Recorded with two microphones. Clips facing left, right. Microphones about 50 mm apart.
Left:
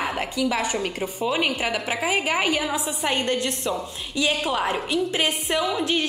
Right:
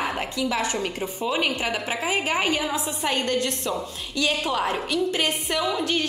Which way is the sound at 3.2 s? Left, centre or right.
Left.